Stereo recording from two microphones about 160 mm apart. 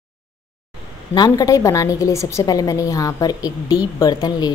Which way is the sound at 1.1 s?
25° left (ahead or behind).